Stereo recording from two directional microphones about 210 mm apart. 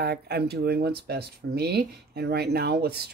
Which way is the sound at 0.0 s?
50° right (ahead or behind).